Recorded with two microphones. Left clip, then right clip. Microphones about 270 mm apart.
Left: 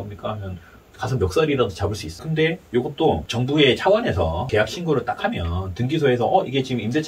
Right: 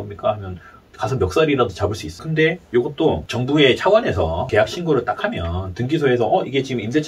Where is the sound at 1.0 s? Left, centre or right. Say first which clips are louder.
Right 3 dB; centre.